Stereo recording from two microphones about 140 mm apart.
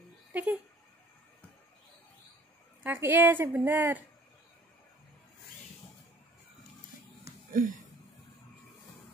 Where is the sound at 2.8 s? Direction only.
15° right (ahead or behind).